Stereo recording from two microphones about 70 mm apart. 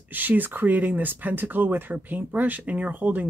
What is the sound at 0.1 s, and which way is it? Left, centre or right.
Speech, right.